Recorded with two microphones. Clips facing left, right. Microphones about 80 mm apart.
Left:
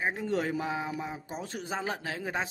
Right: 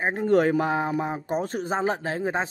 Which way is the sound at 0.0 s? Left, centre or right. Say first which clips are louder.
Right 9 dB; right.